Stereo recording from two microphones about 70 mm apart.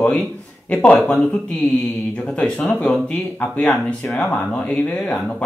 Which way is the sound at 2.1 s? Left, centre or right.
Centre.